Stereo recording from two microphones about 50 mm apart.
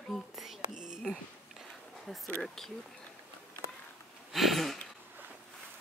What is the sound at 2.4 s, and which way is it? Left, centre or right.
Speech, centre.